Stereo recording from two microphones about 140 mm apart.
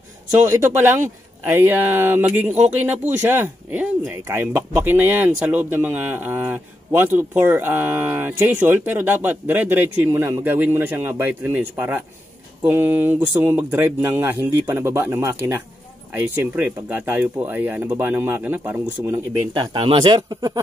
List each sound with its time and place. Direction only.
0.6 s speech: 15° right (ahead or behind)
19.5 s speech: 35° right (ahead or behind)